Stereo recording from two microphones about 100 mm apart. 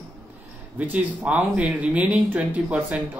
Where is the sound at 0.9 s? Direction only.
15° right (ahead or behind).